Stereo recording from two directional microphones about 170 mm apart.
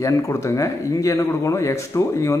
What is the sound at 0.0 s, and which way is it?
Speech, 20° left (ahead or behind).